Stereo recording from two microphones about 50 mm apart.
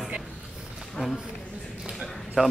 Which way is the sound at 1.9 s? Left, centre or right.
Centre.